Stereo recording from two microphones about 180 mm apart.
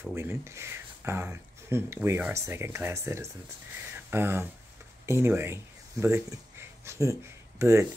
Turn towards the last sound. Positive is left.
turn(degrees=-15)  # may be behind; listen again after turning